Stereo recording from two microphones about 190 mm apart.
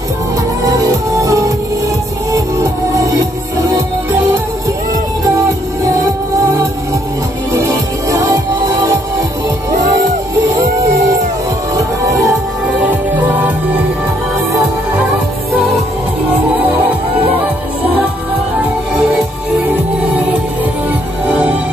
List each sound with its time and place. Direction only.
0.7 s music: 15° right (ahead or behind)
5.9 s music: 15° right (ahead or behind)
19.7 s music: 5° right (ahead or behind)
21.3 s music: 10° right (ahead or behind)